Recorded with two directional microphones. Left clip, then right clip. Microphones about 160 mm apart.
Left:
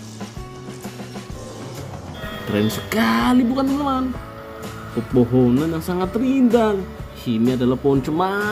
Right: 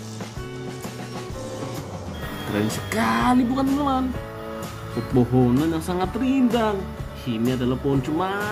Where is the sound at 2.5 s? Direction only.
15° left (ahead or behind).